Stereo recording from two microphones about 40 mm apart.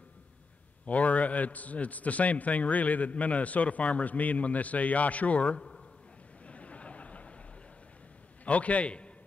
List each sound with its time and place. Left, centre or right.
0.8 s a man's voice: left
6.4 s a sound: left
8.5 s a man's voice: left